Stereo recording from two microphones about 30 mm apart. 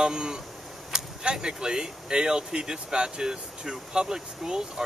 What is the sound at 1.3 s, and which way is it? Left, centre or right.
Speech, right.